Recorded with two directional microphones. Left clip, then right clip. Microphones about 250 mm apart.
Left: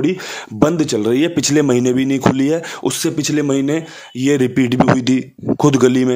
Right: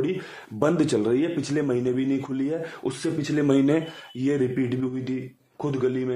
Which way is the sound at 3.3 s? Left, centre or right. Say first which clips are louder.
Left 2 dB; left.